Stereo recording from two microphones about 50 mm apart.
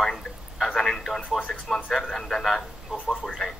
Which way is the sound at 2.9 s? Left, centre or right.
Centre.